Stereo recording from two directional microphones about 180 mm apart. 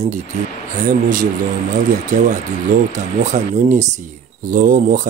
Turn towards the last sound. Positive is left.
turn(degrees=-45)  # may be behind; listen again after turning